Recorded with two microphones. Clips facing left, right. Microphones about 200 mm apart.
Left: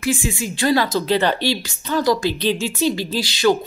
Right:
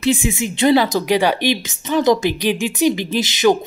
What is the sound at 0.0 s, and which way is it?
A woman's voice, 20° right (ahead or behind).